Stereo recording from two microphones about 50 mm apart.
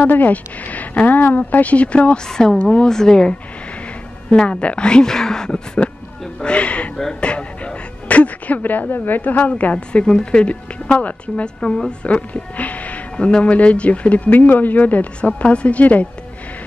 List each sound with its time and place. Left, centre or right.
0.0 s speech: left
2.2 s speech: centre
5.8 s a sound: left
6.4 s a woman's voice: left
14.3 s speech: left
15.1 s a woman's voice: left